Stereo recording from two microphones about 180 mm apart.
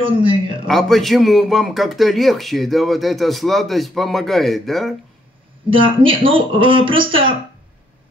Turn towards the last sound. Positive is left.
turn(degrees=-30)  # may be behind; listen again after turning